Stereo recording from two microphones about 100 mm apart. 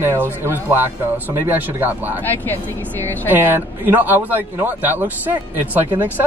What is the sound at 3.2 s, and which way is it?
A man's voice, 20° right (ahead or behind).